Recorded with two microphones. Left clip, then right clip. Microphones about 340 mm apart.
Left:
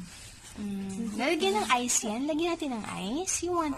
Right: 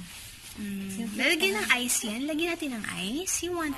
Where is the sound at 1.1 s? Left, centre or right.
Centre.